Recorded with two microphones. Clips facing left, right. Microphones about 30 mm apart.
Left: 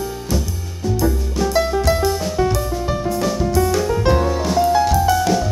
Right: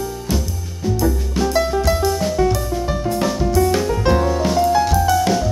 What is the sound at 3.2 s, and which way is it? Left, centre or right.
Music, right.